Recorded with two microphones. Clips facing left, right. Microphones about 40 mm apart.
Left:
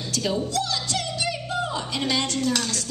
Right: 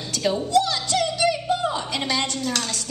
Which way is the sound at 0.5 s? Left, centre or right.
Right.